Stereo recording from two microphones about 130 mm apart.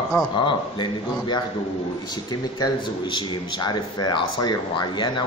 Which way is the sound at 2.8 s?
40° left (ahead or behind).